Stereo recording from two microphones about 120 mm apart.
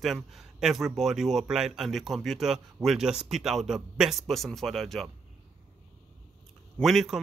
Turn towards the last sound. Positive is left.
turn(degrees=0)  # may be behind; listen again after turning